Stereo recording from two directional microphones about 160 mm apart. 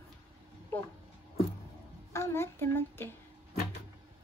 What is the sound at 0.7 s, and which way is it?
Speech, 10° left (ahead or behind).